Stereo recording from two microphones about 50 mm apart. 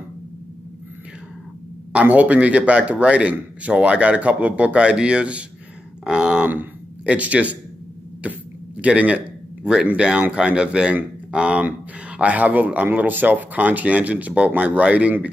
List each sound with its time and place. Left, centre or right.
2.0 s speech: right
6.0 s grunt: centre
6.4 s speech: right
7.1 s speech: right